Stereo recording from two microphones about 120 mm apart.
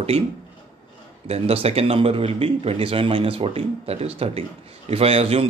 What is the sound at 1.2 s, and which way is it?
A man's voice, 60° right (ahead or behind).